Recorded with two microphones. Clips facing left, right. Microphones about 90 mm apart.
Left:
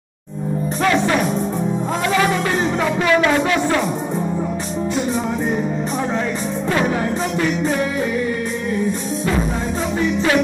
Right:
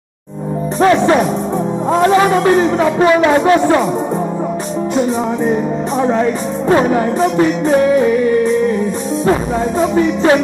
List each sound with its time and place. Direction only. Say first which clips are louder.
0.7 s speech: right 7 dB; 35° right (ahead or behind)
1.9 s music: right 9 dB; 35° right (ahead or behind)
3.0 s speech: right 5 dB; 25° right (ahead or behind)
3.3 s music: right 7 dB; 35° right (ahead or behind)
6.7 s music: right 8 dB; 30° right (ahead or behind)
9.2 s music: right 8 dB; 35° right (ahead or behind)